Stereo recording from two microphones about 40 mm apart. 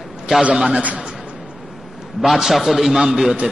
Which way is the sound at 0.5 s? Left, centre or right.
Right.